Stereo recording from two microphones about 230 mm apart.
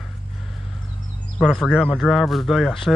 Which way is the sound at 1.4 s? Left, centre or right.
Centre.